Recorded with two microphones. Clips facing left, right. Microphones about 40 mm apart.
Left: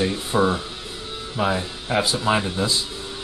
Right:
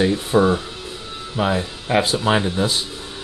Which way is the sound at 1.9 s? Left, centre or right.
Right.